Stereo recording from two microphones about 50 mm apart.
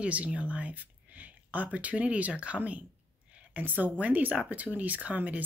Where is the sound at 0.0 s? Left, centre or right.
Right.